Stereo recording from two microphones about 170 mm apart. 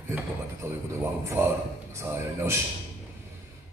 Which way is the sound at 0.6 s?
15° right (ahead or behind).